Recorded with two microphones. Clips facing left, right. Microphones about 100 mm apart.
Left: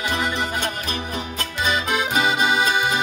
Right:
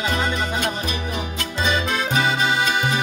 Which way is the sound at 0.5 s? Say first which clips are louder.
Right 2 dB; 35° left (ahead or behind).